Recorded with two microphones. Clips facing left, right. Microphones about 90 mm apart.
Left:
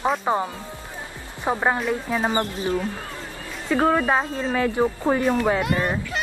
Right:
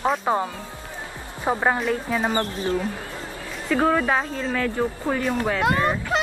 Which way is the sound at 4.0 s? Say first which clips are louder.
Left 1 dB; 5° left (ahead or behind).